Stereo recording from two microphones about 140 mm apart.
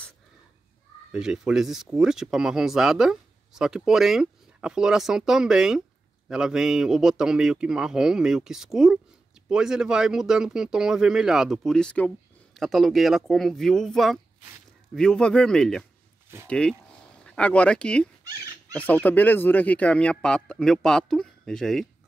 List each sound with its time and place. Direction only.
1.1 s speech: 5° right (ahead or behind)
18.2 s dog: 25° right (ahead or behind)
18.7 s speech: 10° left (ahead or behind)